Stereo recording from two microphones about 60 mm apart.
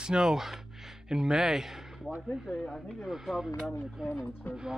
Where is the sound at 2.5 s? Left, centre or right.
Left.